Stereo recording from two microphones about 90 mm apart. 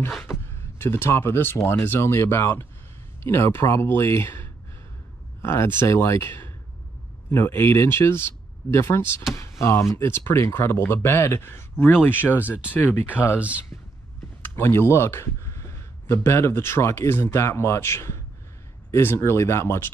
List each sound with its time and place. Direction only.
0.3 s a sound: 25° left (ahead or behind)
1.7 s speech: 25° left (ahead or behind)
12.4 s speech: 15° right (ahead or behind)
13.1 s speech: 20° left (ahead or behind)
14.5 s speech: 25° left (ahead or behind)